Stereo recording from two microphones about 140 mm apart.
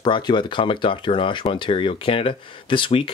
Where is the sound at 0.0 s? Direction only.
35° left (ahead or behind).